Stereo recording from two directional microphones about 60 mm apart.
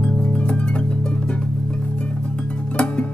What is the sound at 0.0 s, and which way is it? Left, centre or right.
Music, centre.